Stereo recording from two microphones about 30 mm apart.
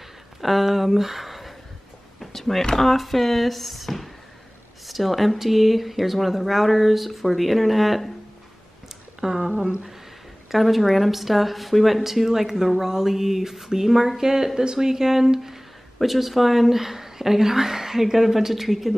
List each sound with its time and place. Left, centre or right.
0.4 s speech: centre
2.1 s a sound: centre
2.7 s speech: centre
9.2 s speech: right
10.5 s speech: centre
12.6 s speech: centre